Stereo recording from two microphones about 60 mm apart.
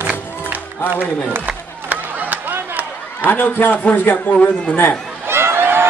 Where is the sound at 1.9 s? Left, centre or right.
Right.